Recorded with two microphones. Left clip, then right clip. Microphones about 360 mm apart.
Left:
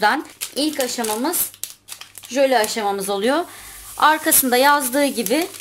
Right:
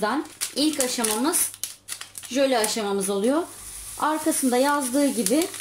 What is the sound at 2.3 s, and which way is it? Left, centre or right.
A woman's voice, centre.